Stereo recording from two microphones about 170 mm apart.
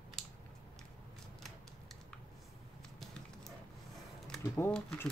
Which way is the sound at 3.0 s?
5° left (ahead or behind).